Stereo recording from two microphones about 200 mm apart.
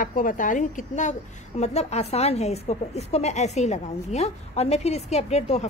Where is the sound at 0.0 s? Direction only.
45° left (ahead or behind).